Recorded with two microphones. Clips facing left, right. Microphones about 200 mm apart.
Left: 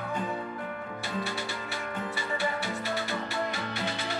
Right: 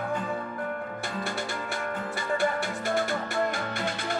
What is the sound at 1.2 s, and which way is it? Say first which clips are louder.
Music: right 3 dB; 50° right (ahead or behind).